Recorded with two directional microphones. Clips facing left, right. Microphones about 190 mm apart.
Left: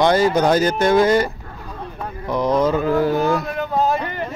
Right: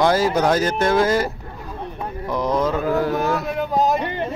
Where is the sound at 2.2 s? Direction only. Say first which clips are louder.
Left 3 dB; centre (ahead or behind).